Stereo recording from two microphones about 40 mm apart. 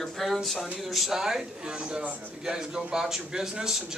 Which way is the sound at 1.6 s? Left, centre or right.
Right.